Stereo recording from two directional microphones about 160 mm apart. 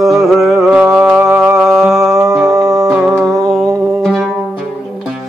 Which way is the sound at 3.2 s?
Centre (ahead or behind).